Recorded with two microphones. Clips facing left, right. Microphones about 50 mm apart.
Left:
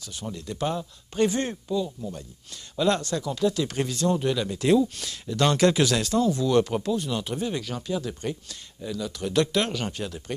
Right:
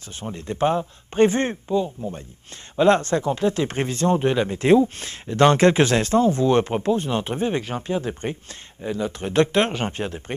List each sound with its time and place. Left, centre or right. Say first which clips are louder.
0.2 s speech: right 7 dB; right